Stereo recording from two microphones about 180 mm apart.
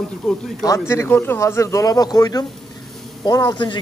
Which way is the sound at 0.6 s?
15° left (ahead or behind).